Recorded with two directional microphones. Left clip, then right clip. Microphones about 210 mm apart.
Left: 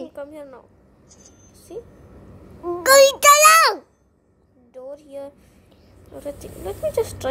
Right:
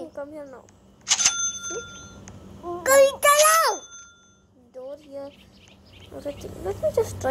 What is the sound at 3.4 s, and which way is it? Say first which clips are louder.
Speech: left 6 dB; 25° left (ahead or behind).